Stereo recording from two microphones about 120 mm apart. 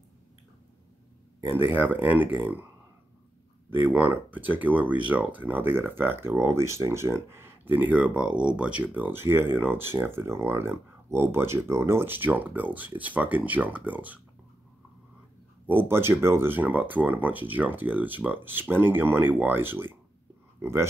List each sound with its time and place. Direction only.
1.6 s speech: 15° right (ahead or behind)
3.7 s speech: 15° right (ahead or behind)
15.6 s speech: 20° right (ahead or behind)